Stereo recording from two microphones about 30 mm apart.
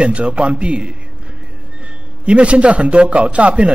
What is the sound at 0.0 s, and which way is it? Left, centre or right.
Speech, right.